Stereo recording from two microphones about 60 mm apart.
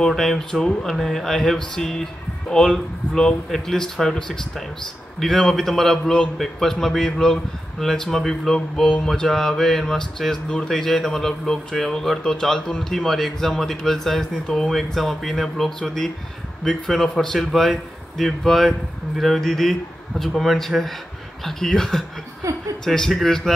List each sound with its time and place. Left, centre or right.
0.0 s speech: centre
22.4 s chuckle: right
22.8 s speech: centre